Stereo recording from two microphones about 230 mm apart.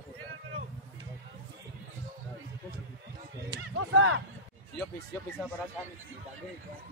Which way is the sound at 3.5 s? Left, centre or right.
Right.